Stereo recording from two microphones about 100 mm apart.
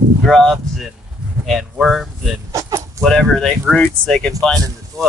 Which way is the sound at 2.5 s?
30° right (ahead or behind).